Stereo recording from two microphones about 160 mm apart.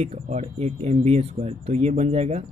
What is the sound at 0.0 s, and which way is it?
Speech, 45° right (ahead or behind).